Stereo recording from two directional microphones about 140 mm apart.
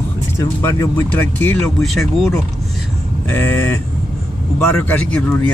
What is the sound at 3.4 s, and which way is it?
Speech, 15° left (ahead or behind).